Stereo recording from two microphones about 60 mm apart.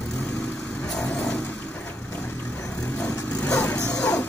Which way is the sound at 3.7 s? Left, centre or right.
Left.